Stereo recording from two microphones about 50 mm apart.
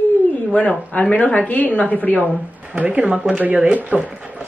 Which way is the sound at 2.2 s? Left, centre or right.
Right.